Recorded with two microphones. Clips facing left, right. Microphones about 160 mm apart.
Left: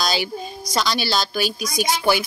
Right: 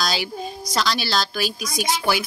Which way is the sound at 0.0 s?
Centre (ahead or behind).